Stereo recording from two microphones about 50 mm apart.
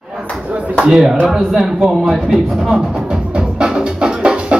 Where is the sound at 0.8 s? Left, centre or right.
Centre.